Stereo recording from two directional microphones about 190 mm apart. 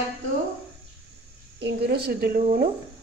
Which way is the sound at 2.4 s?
40° right (ahead or behind).